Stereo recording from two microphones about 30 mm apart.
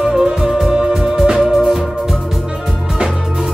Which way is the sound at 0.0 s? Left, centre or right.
Centre.